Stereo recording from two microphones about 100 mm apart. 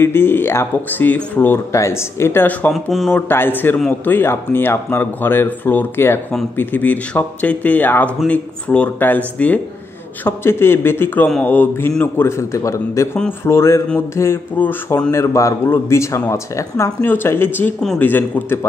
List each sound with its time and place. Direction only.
0.0 s speech: 25° left (ahead or behind)
1.7 s speech: 30° left (ahead or behind)
2.7 s speech: centre (ahead or behind)
3.1 s speech: 20° left (ahead or behind)
15.0 s speech: 35° left (ahead or behind)